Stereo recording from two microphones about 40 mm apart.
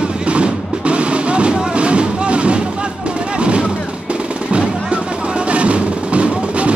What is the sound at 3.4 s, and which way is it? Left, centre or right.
Artillery fire, right.